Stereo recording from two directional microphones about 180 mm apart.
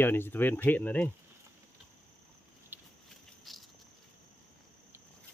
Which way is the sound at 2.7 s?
10° right (ahead or behind).